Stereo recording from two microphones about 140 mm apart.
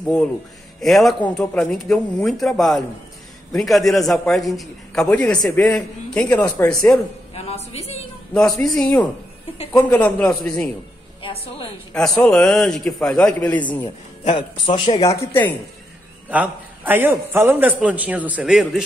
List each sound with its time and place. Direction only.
0.0 s a man's voice: 5° left (ahead or behind)
7.3 s speech: 45° left (ahead or behind)
8.3 s a man's voice: 5° left (ahead or behind)
9.8 s a man's voice: 10° left (ahead or behind)
11.9 s a man's voice: 5° left (ahead or behind)
14.3 s speech: 40° left (ahead or behind)
15.0 s speech: 20° left (ahead or behind)
16.3 s a man's voice: 10° right (ahead or behind)